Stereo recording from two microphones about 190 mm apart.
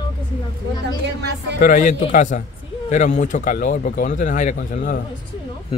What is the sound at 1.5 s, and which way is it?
Speech, 45° left (ahead or behind).